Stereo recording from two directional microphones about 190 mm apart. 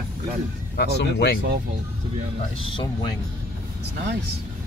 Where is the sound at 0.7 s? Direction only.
60° left (ahead or behind).